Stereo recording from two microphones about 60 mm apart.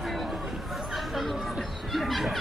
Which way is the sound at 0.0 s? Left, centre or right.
Centre.